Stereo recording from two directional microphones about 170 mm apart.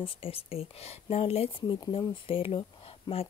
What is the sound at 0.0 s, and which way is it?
Speech, 35° left (ahead or behind).